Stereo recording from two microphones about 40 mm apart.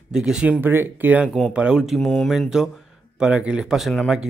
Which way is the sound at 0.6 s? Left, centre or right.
Right.